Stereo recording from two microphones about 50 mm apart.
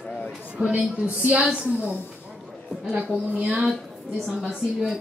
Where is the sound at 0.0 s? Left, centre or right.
Centre.